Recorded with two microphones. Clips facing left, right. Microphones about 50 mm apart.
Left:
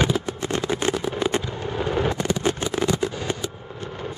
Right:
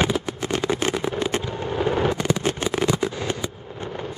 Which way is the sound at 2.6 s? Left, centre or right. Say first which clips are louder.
Right 1 dB; right.